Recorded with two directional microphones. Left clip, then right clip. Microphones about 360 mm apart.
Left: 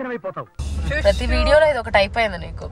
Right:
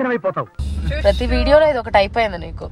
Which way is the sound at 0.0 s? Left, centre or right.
Centre.